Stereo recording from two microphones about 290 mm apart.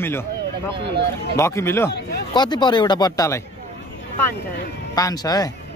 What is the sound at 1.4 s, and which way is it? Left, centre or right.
Speech, centre.